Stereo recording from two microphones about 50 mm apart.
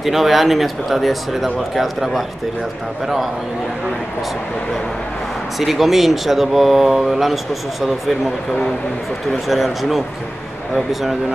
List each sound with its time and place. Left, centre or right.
0.0 s speech: centre
5.6 s speech: centre
9.5 s speech: centre